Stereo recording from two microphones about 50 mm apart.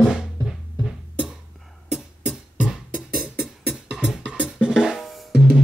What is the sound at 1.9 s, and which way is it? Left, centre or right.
Music, centre.